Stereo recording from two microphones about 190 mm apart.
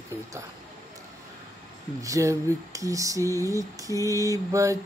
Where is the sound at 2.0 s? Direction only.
15° right (ahead or behind).